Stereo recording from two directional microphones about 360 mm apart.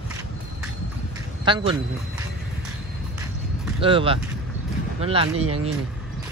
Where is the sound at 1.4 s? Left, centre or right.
Centre.